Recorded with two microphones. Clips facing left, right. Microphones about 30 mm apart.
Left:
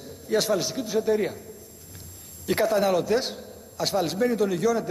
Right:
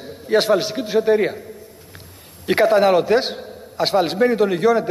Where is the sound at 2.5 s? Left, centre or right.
Right.